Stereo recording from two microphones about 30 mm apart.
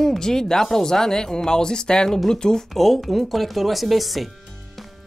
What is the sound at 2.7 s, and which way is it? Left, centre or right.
Speech, centre.